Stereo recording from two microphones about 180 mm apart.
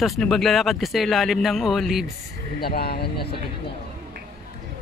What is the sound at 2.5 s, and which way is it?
Speech, 60° left (ahead or behind).